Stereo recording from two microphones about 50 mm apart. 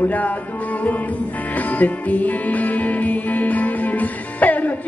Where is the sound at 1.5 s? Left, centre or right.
Left.